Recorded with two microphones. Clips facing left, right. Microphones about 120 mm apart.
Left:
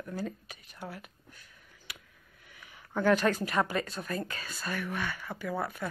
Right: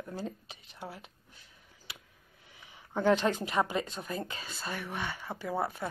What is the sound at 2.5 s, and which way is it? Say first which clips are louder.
Speech: left 1 dB; 25° right (ahead or behind).